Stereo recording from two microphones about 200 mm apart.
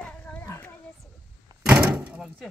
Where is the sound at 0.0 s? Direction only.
5° left (ahead or behind).